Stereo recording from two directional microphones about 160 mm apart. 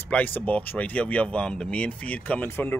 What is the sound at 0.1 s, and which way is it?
Speech, 10° left (ahead or behind).